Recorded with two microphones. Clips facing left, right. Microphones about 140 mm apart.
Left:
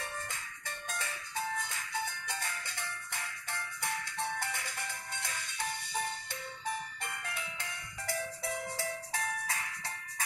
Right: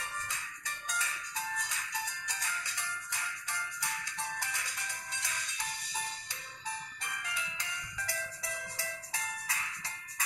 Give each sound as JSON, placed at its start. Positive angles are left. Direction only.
{"t": 1.6, "sound": "music", "side_deg": 55}
{"t": 7.1, "sound": "music", "side_deg": 50}